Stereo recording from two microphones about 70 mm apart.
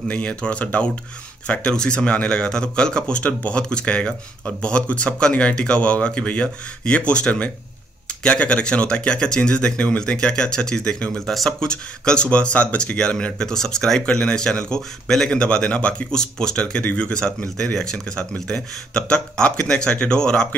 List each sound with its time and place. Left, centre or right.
0.1 s speech: centre